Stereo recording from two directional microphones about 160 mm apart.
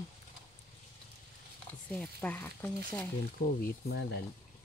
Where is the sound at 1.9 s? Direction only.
10° left (ahead or behind).